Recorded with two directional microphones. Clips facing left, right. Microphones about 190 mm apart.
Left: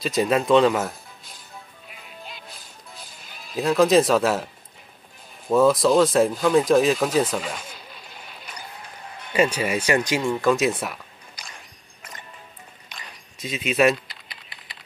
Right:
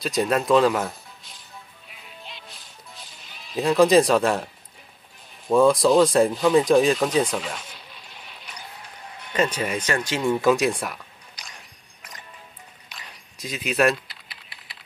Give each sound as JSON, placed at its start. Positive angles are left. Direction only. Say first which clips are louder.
{"t": 0.0, "sound": "speech", "louder": "left 1 dB", "side_deg": 0}
{"t": 1.9, "sound": "music", "louder": "left 3 dB", "side_deg": 0}
{"t": 3.2, "sound": "speech", "louder": "right 1 dB", "side_deg": 0}
{"t": 5.5, "sound": "speech", "louder": "even", "side_deg": 5}
{"t": 9.3, "sound": "speech", "louder": "left 3 dB", "side_deg": 10}
{"t": 10.2, "sound": "speech", "louder": "right 6 dB", "side_deg": 0}
{"t": 12.9, "sound": "typing", "louder": "left 2 dB", "side_deg": 0}